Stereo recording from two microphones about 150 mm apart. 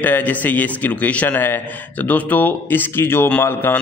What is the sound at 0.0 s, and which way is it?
A man's voice, 10° left (ahead or behind).